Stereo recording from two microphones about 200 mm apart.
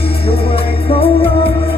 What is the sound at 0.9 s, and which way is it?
Music, 30° left (ahead or behind).